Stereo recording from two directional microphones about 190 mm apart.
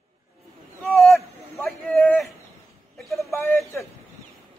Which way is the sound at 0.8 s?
Centre (ahead or behind).